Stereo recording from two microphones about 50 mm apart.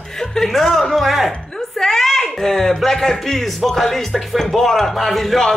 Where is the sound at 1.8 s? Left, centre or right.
Centre.